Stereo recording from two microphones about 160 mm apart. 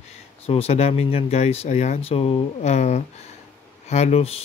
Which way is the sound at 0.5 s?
40° left (ahead or behind).